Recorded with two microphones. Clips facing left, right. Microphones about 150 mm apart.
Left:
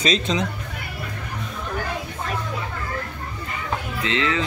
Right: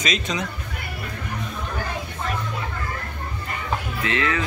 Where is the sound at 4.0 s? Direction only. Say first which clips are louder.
Left 2 dB; 20° left (ahead or behind).